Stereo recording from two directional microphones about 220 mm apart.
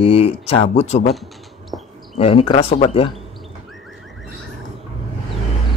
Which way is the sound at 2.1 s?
25° left (ahead or behind).